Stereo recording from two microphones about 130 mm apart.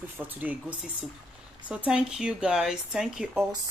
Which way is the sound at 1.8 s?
5° right (ahead or behind).